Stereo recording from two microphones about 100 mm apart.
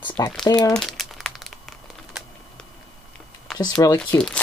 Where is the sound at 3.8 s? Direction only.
40° left (ahead or behind).